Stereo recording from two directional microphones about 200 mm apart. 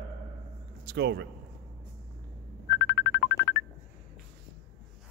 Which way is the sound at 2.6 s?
55° left (ahead or behind).